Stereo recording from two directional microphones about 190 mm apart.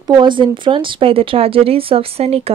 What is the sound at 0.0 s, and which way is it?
A woman's voice, 25° right (ahead or behind).